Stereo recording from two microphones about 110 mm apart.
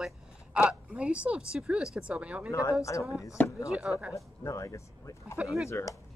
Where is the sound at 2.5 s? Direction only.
30° left (ahead or behind).